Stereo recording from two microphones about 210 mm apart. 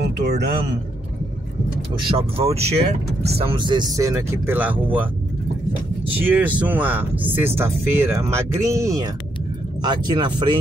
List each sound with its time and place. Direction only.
0.0 s speech: 50° right (ahead or behind)
2.0 s speech: 25° right (ahead or behind); by 5.1 s 10° right (ahead or behind)
6.2 s speech: 5° right (ahead or behind)